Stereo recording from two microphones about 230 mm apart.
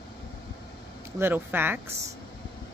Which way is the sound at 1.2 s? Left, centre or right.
Centre.